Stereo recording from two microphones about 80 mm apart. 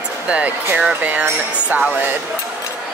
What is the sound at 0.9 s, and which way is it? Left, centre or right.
Music, right.